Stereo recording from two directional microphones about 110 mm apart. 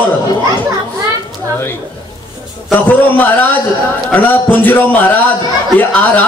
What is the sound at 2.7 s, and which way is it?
A man's voice, 15° left (ahead or behind).